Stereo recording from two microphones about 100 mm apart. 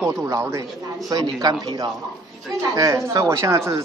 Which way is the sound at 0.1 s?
30° right (ahead or behind).